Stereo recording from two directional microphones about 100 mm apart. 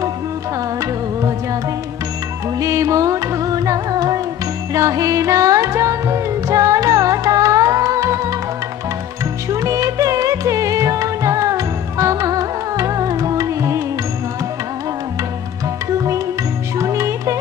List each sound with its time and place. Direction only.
0.7 s music: 30° right (ahead or behind)
2.6 s music: 35° right (ahead or behind)
9.5 s music: 35° right (ahead or behind)
16.7 s music: 30° right (ahead or behind)